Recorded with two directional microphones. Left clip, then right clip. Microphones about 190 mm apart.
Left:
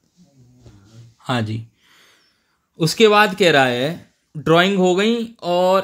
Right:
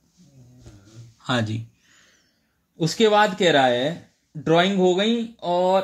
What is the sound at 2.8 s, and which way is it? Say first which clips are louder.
Speech: left 4 dB; 55° left (ahead or behind).